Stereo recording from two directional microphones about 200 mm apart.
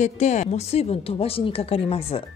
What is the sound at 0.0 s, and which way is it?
Speech, 35° left (ahead or behind).